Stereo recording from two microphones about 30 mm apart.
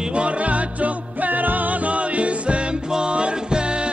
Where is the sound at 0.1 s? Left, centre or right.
Right.